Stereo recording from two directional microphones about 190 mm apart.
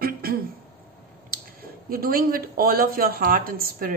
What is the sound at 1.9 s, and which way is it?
A woman's voice, 50° right (ahead or behind).